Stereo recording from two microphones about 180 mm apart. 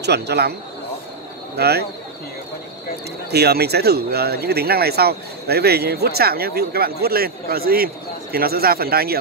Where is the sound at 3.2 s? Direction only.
65° right (ahead or behind).